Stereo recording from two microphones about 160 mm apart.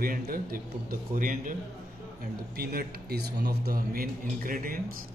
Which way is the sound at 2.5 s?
70° right (ahead or behind).